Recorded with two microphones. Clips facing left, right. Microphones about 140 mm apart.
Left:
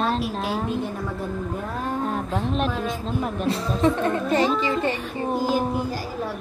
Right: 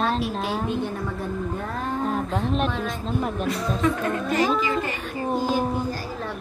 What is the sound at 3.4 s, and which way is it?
Speech, 30° left (ahead or behind).